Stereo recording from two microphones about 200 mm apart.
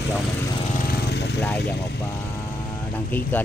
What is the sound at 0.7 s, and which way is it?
Lawn mower, 50° left (ahead or behind).